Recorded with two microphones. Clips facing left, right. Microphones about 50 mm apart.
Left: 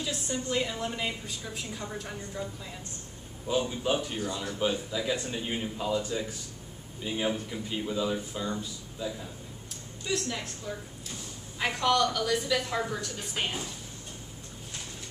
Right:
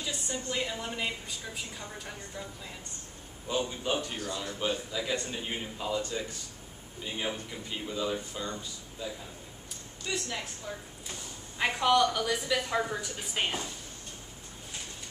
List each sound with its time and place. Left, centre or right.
0.0 s a woman's voice: centre
9.0 s a woman's voice: centre
11.5 s a woman's voice: centre